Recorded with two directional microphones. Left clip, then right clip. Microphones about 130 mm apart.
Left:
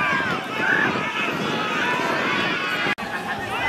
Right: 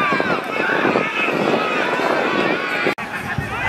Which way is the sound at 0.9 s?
5° left (ahead or behind).